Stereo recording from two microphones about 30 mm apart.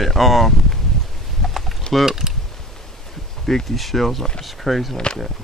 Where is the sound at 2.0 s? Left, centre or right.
Centre.